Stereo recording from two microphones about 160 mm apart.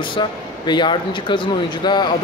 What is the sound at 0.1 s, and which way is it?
Speech, 30° left (ahead or behind).